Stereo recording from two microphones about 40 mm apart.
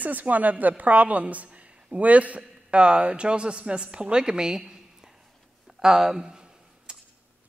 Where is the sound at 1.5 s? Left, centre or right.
Right.